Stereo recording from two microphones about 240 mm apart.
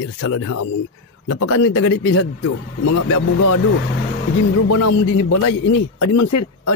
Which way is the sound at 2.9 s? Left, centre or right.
Left.